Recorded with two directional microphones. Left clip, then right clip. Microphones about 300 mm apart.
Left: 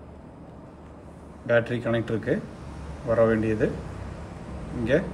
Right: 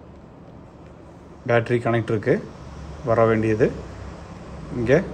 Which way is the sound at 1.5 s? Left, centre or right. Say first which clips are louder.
Right 3 dB; right.